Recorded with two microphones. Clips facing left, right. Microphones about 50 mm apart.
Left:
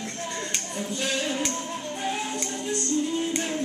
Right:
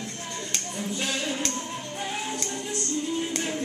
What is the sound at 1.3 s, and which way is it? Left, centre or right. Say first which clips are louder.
Music: left 2 dB; centre.